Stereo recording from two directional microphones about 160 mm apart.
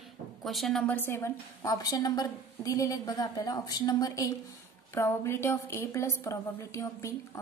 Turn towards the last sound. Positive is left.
turn(degrees=20)  # may be behind; listen again after turning